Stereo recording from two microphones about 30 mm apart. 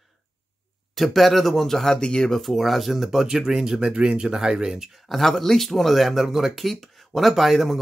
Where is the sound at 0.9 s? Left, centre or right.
Centre.